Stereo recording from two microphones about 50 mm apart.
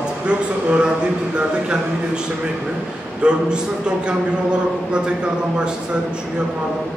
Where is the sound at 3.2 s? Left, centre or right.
Right.